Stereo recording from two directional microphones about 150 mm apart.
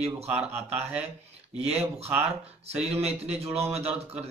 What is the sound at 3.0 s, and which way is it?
Speech, 45° right (ahead or behind).